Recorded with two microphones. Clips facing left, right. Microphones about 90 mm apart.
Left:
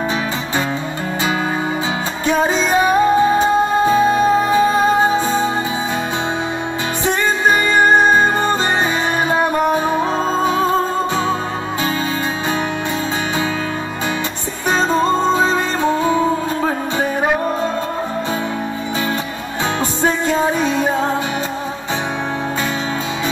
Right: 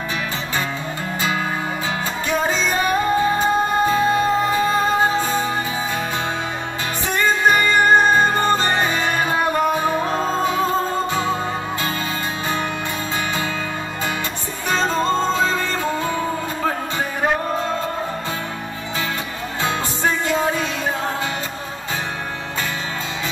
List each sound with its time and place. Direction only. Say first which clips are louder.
2.2 s music: left 5 dB; 20° left (ahead or behind)
7.5 s music: left 4 dB; 15° left (ahead or behind)
14.7 s music: left 4 dB; 15° left (ahead or behind)
20.5 s music: left 6 dB; 5° left (ahead or behind)